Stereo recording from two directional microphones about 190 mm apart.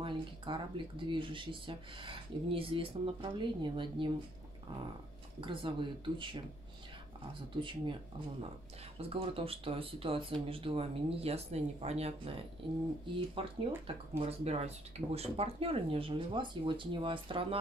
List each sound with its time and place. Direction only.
0.0 s speech: 25° right (ahead or behind)
5.4 s speech: 25° right (ahead or behind)
7.6 s speech: 25° right (ahead or behind)